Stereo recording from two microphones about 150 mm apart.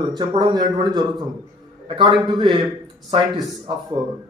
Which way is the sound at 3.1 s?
40° right (ahead or behind).